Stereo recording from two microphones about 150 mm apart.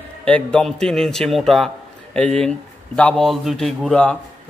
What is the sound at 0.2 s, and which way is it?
A man's voice, 5° left (ahead or behind).